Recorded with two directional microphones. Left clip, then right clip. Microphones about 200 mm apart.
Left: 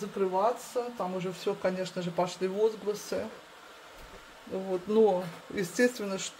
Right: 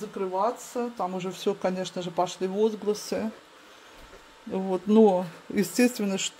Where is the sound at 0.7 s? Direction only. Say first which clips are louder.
Right 3 dB; 45° right (ahead or behind).